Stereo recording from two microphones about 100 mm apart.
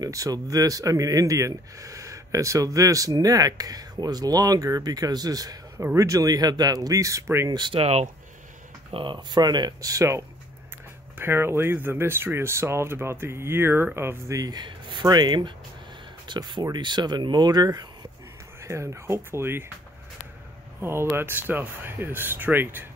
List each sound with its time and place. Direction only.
0.0 s speech: 35° right (ahead or behind)
7.4 s speech: 50° right (ahead or behind)
7.8 s speech: 90° right
8.9 s speech: 50° right (ahead or behind); by 14.6 s 35° right (ahead or behind)
14.6 s speech: 50° right (ahead or behind)
18.6 s speech: 30° right (ahead or behind)
20.8 s speech: 25° right (ahead or behind)